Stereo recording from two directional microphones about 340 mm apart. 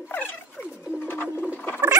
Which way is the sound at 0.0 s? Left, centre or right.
Centre.